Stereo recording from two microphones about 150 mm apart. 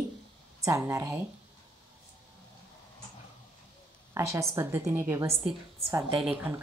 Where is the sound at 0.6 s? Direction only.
20° right (ahead or behind).